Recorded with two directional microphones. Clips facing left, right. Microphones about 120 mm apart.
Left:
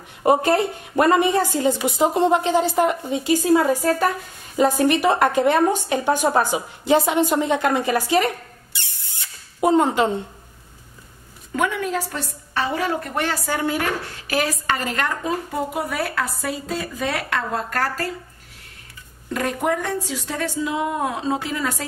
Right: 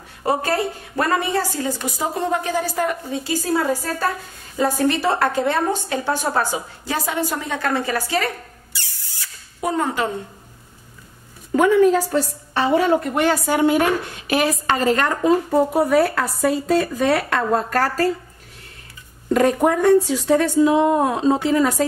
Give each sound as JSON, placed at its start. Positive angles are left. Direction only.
{"t": 0.2, "sound": "a woman's voice", "side_deg": 20}
{"t": 8.7, "sound": "spray", "side_deg": 20}
{"t": 11.5, "sound": "a woman's voice", "side_deg": -35}
{"t": 19.3, "sound": "speech", "side_deg": -40}